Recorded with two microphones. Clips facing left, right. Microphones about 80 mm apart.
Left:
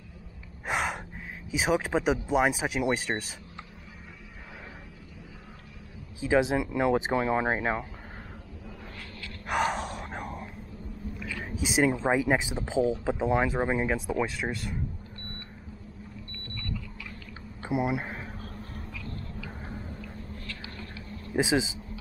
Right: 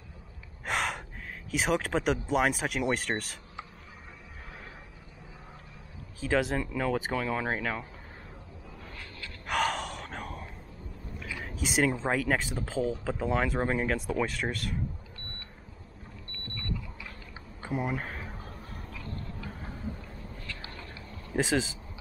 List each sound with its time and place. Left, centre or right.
0.7 s gasp: centre
1.5 s speech: centre
6.2 s speech: centre; by 7.8 s left
9.5 s gasp: centre
11.3 s speech: centre
17.6 s a sound: centre
18.9 s a sound: right
20.6 s a sound: right
21.3 s speech: centre